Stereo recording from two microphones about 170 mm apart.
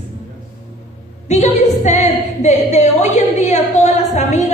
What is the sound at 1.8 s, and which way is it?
A woman's voice, 40° left (ahead or behind).